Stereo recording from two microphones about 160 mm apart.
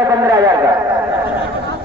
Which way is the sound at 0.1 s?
20° right (ahead or behind).